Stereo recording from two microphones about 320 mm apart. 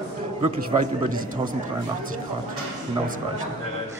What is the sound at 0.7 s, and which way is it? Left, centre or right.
Speech, right.